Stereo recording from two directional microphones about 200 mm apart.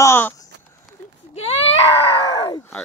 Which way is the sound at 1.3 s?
30° left (ahead or behind).